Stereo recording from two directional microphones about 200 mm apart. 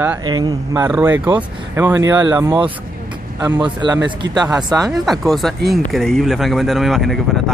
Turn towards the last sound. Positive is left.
turn(degrees=0)  # may be behind; listen again after turning